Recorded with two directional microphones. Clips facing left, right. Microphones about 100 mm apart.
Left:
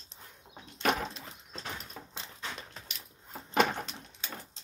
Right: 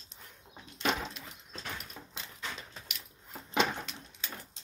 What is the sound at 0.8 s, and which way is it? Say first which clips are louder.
Door: left 3 dB; 45° left (ahead or behind).